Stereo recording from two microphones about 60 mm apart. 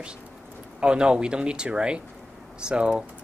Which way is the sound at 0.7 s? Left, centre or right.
Centre.